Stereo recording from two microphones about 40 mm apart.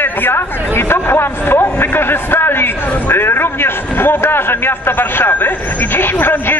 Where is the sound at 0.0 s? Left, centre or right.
Left.